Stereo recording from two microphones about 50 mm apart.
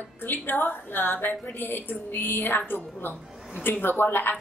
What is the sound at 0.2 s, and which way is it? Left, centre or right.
A woman's voice, left.